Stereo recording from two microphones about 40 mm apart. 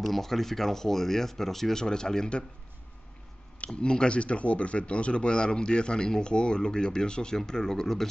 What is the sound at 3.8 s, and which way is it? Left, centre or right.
Speech, left.